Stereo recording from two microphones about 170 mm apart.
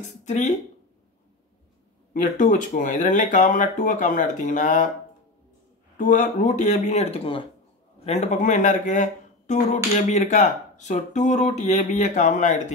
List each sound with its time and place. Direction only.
0.0 s speech: 45° left (ahead or behind)
2.2 s speech: 45° left (ahead or behind)
5.9 s speech: 50° left (ahead or behind)